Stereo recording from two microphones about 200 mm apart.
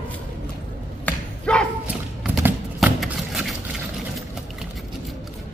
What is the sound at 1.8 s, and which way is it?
Clip-clop, 5° right (ahead or behind).